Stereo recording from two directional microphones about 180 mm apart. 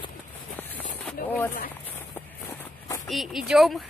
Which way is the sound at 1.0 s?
10° left (ahead or behind).